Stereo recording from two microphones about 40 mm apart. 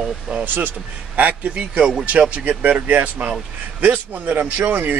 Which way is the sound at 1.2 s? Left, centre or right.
Right.